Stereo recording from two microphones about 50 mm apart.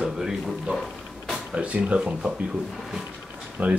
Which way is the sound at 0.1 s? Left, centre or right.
Centre.